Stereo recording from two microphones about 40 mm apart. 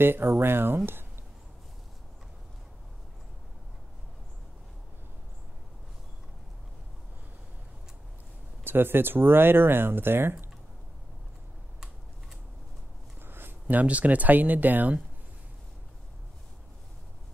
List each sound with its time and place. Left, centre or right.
0.0 s speech: right
8.6 s speech: right
13.2 s a sound: right
13.7 s speech: right